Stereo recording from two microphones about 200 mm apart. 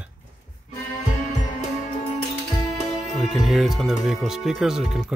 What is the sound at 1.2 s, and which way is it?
Music, 40° left (ahead or behind).